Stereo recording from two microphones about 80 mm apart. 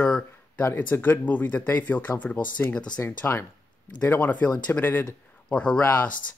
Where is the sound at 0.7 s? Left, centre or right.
Left.